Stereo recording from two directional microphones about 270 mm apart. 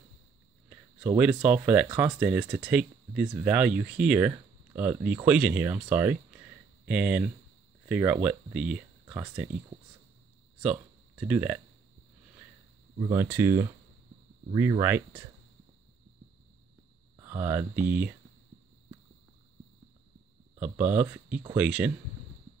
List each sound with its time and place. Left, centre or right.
0.7 s speech: centre
9.0 s a sound: centre
10.6 s speech: centre
13.1 s speech: centre
17.2 s speech: centre
20.5 s speech: centre